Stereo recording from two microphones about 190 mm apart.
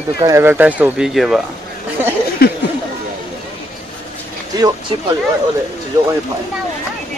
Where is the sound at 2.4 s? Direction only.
55° left (ahead or behind).